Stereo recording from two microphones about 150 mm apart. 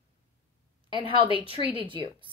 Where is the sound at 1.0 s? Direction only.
35° right (ahead or behind).